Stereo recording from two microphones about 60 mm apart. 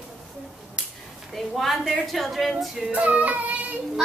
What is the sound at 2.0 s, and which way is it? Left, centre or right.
Speech, centre.